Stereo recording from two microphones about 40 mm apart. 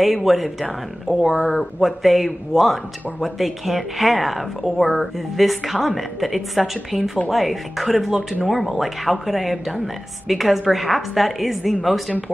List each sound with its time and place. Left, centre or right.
0.0 s speech: centre